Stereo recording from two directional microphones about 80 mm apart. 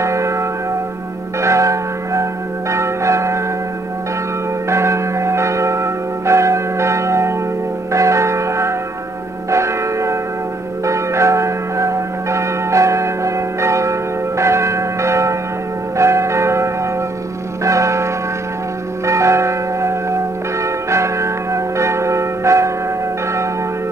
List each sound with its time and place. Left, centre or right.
0.0 s church bell: right
2.7 s change ringing: right
4.6 s church bell: right